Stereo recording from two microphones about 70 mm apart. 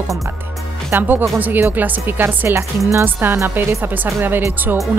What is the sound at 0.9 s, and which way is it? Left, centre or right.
Speech, right.